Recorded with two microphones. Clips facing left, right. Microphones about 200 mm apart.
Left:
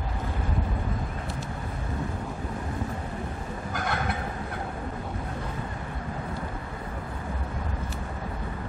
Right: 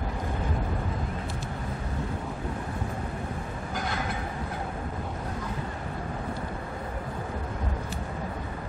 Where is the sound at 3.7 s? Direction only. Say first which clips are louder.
Left 2 dB; 60° left (ahead or behind).